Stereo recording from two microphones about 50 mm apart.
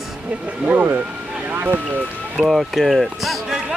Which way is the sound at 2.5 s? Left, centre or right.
Centre.